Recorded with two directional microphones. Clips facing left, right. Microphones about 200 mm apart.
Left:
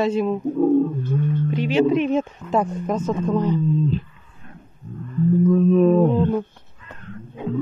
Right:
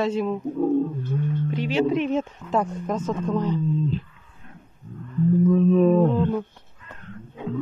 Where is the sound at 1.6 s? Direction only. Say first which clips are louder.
Left 4 dB; 15° left (ahead or behind).